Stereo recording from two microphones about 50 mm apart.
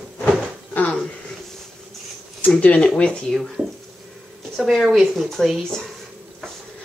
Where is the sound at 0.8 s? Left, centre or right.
Left.